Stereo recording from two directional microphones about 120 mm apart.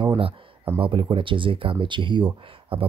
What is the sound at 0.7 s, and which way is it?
Speech, 45° right (ahead or behind).